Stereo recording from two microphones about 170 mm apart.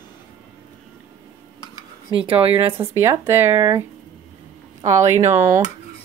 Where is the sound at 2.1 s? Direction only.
30° right (ahead or behind).